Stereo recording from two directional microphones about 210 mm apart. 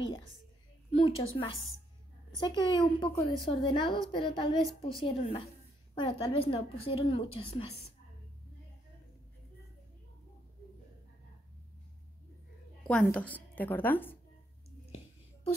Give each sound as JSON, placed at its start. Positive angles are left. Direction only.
{"t": 0.9, "sound": "a woman's voice", "side_deg": 25}
{"t": 12.8, "sound": "a woman's voice", "side_deg": 5}